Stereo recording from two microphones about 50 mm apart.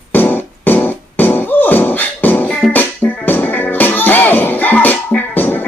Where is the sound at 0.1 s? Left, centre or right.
Left.